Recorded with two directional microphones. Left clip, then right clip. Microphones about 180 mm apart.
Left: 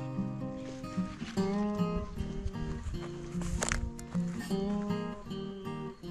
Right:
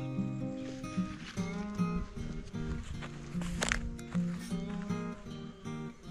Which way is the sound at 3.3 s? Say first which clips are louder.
Right 2 dB; centre (ahead or behind).